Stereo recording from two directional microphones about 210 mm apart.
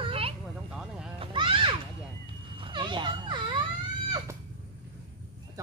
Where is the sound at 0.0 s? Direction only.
25° right (ahead or behind).